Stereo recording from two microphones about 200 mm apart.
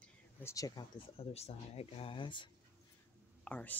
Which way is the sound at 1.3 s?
30° left (ahead or behind).